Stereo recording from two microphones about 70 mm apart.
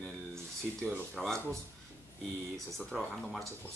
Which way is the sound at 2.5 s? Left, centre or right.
Centre.